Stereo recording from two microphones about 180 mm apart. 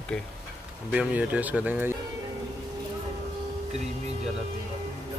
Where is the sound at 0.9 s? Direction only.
10° right (ahead or behind).